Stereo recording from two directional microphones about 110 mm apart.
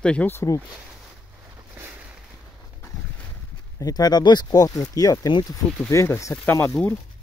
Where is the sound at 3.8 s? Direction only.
35° left (ahead or behind); by 6.8 s 20° left (ahead or behind).